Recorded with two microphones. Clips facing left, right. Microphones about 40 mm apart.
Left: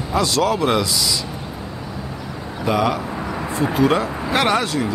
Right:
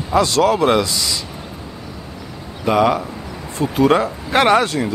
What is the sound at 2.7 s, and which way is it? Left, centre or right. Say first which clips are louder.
Speech: right 4 dB; right.